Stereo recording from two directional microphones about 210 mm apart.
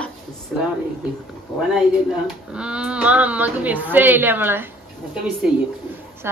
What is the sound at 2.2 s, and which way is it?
A woman's voice, 5° right (ahead or behind).